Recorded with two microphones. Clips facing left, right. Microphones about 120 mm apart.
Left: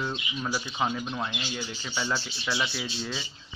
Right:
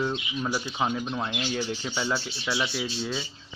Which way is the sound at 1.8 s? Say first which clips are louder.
Right 2 dB; 15° right (ahead or behind).